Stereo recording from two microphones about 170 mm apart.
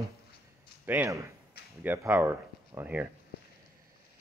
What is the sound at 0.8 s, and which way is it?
A man's voice, 10° right (ahead or behind).